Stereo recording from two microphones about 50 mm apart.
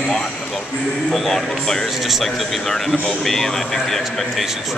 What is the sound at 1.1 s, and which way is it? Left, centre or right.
A man's voice, centre.